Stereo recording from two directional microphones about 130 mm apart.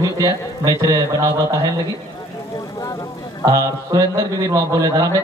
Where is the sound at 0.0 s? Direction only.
25° right (ahead or behind).